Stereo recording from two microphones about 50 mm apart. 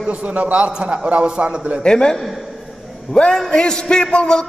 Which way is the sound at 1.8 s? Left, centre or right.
Centre.